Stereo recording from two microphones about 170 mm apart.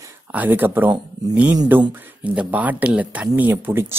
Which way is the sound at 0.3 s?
10° right (ahead or behind).